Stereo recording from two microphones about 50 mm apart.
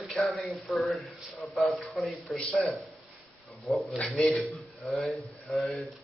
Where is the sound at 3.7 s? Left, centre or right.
Centre.